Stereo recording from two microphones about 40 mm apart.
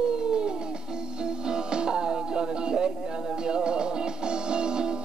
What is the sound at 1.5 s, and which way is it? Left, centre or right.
Music, right.